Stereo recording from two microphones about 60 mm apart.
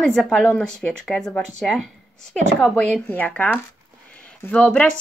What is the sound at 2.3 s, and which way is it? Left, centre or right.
Speech, centre.